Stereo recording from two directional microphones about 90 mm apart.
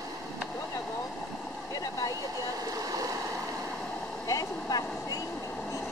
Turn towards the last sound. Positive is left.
turn(degrees=40)  # may be behind; listen again after turning